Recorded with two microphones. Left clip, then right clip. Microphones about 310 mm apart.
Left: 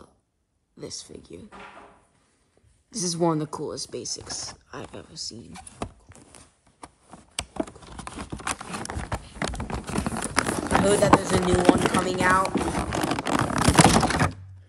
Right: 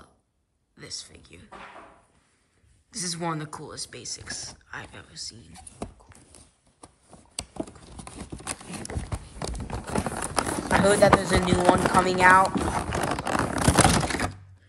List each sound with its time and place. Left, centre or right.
0.7 s speech: centre
2.9 s speech: centre
5.5 s speech: centre
6.1 s a sound: centre